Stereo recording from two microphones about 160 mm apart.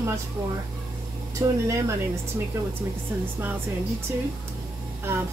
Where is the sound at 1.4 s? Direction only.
20° right (ahead or behind).